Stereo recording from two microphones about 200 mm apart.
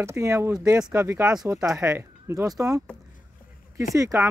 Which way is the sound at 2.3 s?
15° right (ahead or behind).